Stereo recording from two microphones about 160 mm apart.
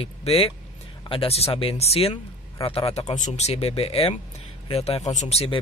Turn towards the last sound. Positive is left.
turn(degrees=40)  # may be behind; listen again after turning